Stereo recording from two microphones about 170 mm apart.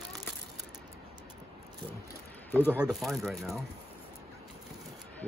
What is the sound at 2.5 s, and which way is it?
Speech, 10° left (ahead or behind).